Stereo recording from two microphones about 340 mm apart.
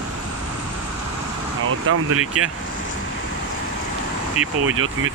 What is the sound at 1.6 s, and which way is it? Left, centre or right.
Speech, right.